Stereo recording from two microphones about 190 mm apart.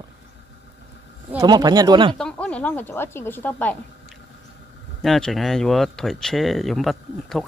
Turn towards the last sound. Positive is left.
turn(degrees=0)  # may be behind; listen again after turning